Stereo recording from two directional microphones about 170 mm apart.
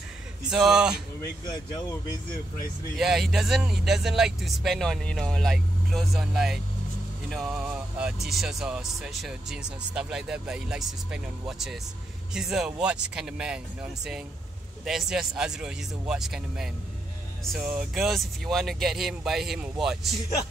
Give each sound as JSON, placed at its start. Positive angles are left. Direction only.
{"t": 0.5, "sound": "speech", "side_deg": -5}
{"t": 1.4, "sound": "speech", "side_deg": 25}
{"t": 3.0, "sound": "speech", "side_deg": 0}
{"t": 14.9, "sound": "speech", "side_deg": 0}